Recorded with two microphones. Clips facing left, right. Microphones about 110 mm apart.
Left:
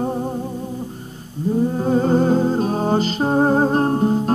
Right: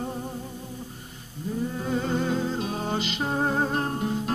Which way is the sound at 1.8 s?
40° left (ahead or behind).